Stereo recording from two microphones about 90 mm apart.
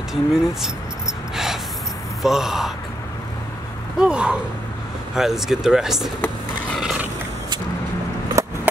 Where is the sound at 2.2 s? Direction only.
5° right (ahead or behind).